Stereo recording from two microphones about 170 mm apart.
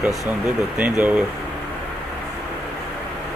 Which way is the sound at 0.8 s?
10° right (ahead or behind).